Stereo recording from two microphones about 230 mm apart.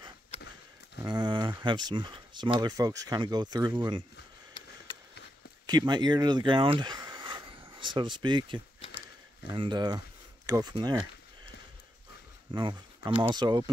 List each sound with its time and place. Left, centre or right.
1.0 s speech: centre
5.7 s speech: centre
12.5 s speech: centre